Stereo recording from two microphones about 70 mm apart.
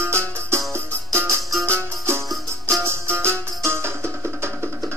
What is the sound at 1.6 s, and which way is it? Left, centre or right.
Music, right.